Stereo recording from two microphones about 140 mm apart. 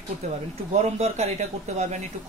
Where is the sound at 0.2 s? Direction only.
55° right (ahead or behind).